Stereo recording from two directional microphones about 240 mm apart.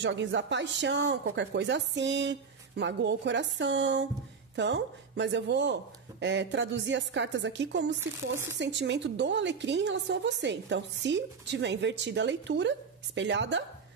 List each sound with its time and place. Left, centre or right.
0.0 s a woman's voice: right